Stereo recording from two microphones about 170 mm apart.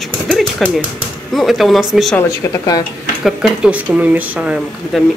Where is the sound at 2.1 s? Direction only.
20° left (ahead or behind).